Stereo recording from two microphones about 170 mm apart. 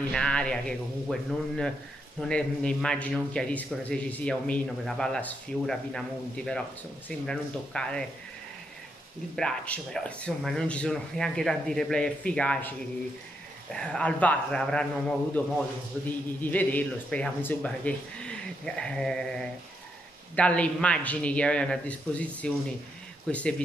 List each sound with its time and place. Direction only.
0.1 s a man's voice: 5° left (ahead or behind)
9.3 s a man's voice: 5° left (ahead or behind)